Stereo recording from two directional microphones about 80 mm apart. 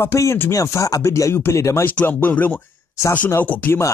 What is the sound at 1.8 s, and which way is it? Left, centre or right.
Speech, left.